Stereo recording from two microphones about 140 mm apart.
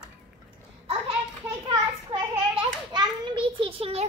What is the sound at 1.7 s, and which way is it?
Hands, 30° right (ahead or behind).